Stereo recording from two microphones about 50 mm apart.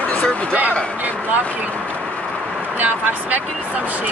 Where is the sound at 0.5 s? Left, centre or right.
Right.